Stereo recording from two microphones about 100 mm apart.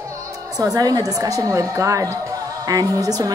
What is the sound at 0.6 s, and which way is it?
A woman's voice, 35° right (ahead or behind).